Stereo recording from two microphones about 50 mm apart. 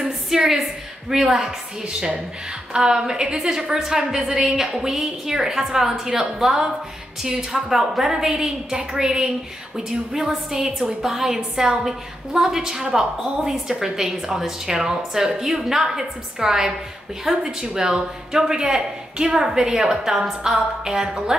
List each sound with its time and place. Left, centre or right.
0.0 s a woman's voice: centre